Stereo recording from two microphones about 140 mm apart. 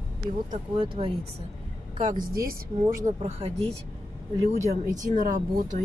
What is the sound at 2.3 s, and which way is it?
Speech, 90° right.